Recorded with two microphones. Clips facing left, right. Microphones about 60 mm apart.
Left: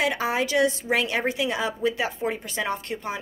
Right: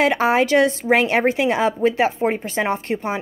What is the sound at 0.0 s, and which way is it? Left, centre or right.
A woman's voice, right.